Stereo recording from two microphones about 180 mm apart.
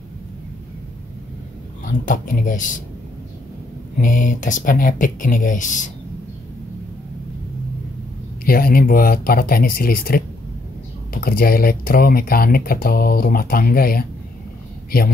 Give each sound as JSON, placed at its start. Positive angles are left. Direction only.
{"t": 1.9, "sound": "speech", "side_deg": 45}
{"t": 4.0, "sound": "speech", "side_deg": 45}
{"t": 8.5, "sound": "speech", "side_deg": 55}